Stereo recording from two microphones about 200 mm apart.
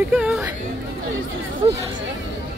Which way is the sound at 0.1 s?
10° right (ahead or behind).